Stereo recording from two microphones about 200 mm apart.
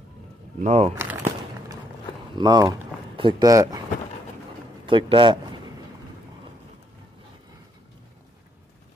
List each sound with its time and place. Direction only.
0.6 s speech: 35° right (ahead or behind)
2.3 s speech: 20° right (ahead or behind)
4.8 s speech: 25° right (ahead or behind)